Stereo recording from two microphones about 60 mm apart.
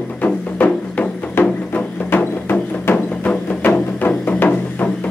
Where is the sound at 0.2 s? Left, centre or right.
Left.